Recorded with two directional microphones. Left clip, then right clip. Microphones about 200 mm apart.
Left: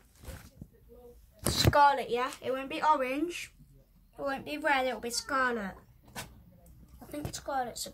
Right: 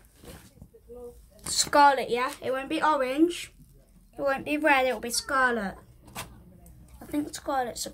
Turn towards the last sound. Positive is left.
turn(degrees=-10)  # may be behind; listen again after turning